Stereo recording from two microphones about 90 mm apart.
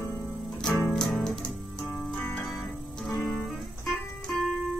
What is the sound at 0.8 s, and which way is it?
Music, centre (ahead or behind).